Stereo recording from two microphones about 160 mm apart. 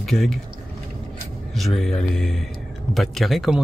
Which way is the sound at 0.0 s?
Centre (ahead or behind).